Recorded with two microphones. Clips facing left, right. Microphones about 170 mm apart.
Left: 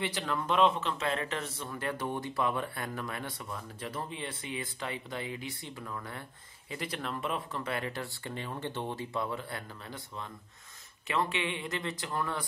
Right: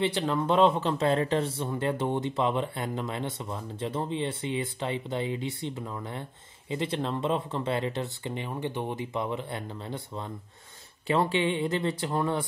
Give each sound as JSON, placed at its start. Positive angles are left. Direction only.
{"t": 0.0, "sound": "speech", "side_deg": -25}